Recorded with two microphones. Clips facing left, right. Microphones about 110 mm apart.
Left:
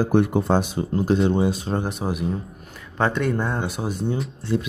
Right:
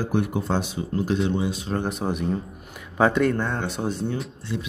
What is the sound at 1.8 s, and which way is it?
Speech, 5° left (ahead or behind).